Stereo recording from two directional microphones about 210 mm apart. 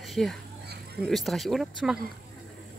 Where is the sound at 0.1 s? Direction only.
Centre (ahead or behind).